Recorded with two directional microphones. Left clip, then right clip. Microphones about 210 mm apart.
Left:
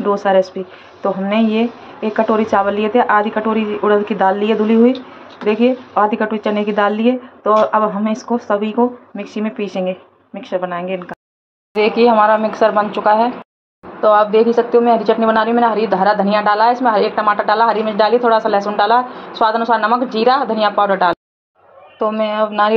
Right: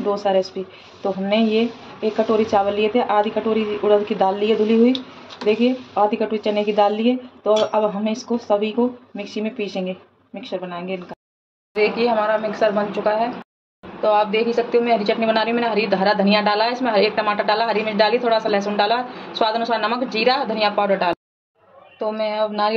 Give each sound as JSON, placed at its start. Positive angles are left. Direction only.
{"t": 0.2, "sound": "a woman's voice", "side_deg": 15}